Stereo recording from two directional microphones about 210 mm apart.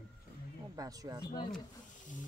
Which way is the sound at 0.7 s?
15° right (ahead or behind).